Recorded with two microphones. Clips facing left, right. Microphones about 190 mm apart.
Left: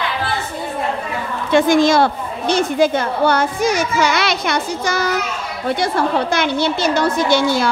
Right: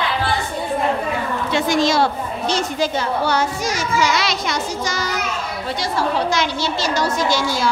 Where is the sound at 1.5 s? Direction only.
55° left (ahead or behind).